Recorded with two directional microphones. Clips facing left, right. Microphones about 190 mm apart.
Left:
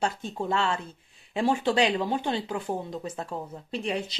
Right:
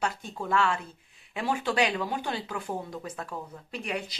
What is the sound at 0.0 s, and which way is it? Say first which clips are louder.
Speech: left 3 dB; 25° left (ahead or behind).